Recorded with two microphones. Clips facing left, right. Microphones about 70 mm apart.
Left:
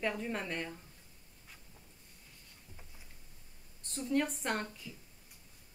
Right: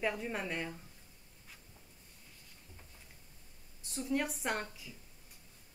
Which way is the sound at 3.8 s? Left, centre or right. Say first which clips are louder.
Left 2 dB; centre.